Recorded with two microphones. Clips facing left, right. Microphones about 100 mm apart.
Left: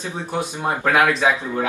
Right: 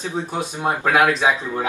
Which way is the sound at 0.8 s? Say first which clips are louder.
Even; 15° right (ahead or behind).